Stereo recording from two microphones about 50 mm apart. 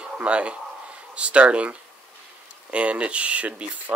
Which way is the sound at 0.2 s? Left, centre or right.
Right.